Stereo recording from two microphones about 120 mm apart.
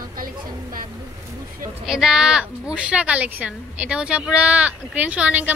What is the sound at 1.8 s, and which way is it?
Speech, 5° right (ahead or behind).